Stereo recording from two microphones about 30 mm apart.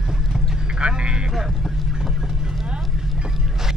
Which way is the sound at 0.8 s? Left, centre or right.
Right.